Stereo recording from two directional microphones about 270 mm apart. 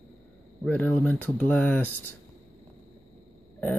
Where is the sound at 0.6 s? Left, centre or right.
Centre.